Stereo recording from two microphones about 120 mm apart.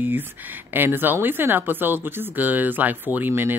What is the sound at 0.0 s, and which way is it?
A woman's voice, 15° right (ahead or behind).